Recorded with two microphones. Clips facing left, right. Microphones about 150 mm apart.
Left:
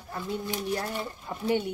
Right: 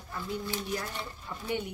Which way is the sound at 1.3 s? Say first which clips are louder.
Left 4 dB; 25° left (ahead or behind).